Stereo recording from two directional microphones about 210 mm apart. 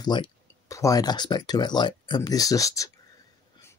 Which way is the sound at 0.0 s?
20° left (ahead or behind).